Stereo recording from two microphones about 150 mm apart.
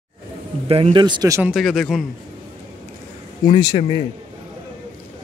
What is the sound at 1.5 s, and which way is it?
Speech, centre (ahead or behind).